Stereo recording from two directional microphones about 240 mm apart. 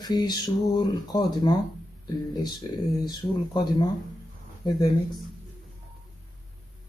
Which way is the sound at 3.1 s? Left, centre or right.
Centre.